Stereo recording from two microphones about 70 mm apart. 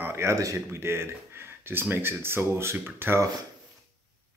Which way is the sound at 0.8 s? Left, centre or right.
Right.